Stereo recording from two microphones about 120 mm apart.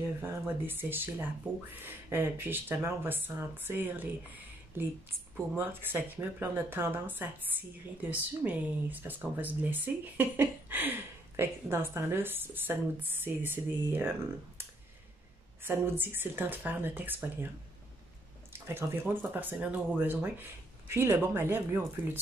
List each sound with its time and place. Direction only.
0.2 s a woman's voice: 20° right (ahead or behind)
15.6 s a woman's voice: 20° right (ahead or behind)
18.5 s a woman's voice: 20° right (ahead or behind)